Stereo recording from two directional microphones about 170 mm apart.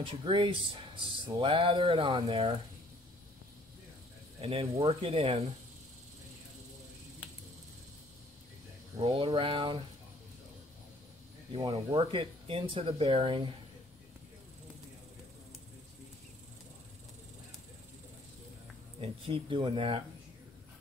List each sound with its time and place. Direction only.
0.0 s speech: 30° right (ahead or behind)
4.4 s speech: 35° right (ahead or behind)
9.1 s speech: 30° right (ahead or behind)
11.5 s speech: 35° right (ahead or behind)
18.9 s speech: 30° right (ahead or behind)